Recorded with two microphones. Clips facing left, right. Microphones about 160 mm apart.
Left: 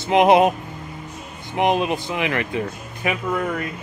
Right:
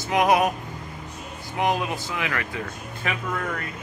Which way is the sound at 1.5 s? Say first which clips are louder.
Left 5 dB; 20° left (ahead or behind).